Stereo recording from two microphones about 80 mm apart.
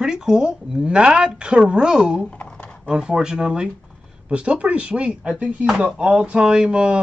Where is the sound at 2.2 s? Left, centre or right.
Centre.